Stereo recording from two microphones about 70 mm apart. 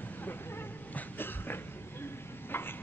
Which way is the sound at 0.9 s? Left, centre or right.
Left.